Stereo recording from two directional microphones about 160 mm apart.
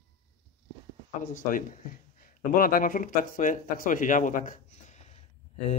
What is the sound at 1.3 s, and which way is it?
A man's voice, 55° left (ahead or behind).